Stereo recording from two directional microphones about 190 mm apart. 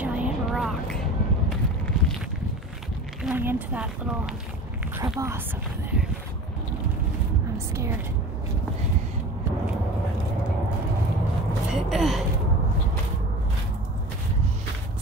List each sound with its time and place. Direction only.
0.0 s vehicle: 5° right (ahead or behind)
3.3 s speech: 10° right (ahead or behind)
7.5 s a sound: 15° right (ahead or behind)
11.7 s speech: centre (ahead or behind)